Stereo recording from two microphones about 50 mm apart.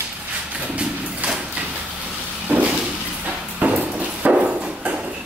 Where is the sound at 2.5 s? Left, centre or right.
Right.